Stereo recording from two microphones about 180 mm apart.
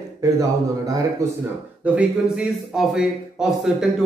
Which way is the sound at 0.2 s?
20° right (ahead or behind).